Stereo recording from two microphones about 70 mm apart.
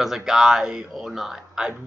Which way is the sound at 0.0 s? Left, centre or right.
Centre.